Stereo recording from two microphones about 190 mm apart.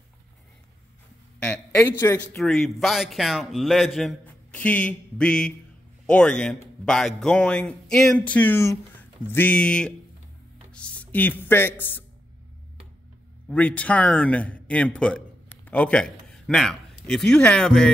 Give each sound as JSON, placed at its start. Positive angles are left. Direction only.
{"t": 1.4, "sound": "a man's voice", "side_deg": 5}
{"t": 13.5, "sound": "a man's voice", "side_deg": 5}